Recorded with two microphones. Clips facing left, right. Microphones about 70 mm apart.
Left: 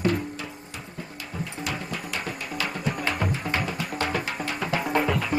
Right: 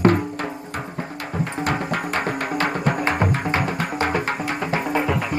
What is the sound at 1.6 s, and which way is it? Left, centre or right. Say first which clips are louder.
Music: right 9 dB; right.